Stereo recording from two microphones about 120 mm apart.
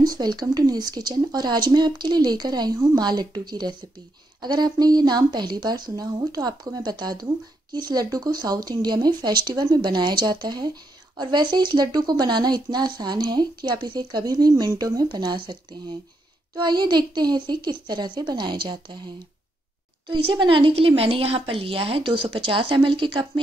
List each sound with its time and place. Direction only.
0.0 s speech: 35° right (ahead or behind)
16.5 s speech: 40° right (ahead or behind)
20.1 s a woman's voice: 45° right (ahead or behind)